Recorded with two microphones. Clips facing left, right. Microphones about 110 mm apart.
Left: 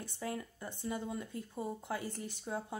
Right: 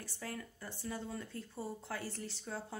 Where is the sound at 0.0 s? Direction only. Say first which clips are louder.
Left 4 dB; 20° left (ahead or behind).